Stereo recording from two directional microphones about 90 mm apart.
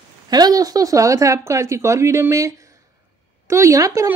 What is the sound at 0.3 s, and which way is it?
Speech, 45° right (ahead or behind).